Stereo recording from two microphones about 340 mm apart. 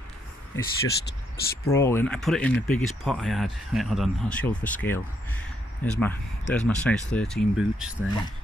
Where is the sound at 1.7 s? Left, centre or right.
Centre.